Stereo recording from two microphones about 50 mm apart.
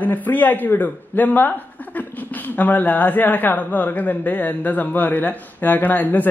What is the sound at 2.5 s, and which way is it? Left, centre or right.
A man's voice, left.